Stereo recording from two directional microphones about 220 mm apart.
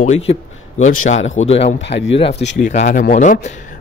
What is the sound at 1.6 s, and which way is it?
Speech, 55° left (ahead or behind).